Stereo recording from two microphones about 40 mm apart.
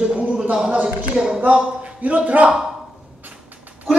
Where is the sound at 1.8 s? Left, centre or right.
Right.